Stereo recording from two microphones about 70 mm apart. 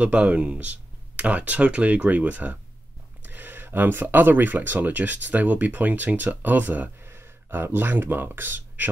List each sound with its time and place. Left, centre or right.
0.0 s speech: centre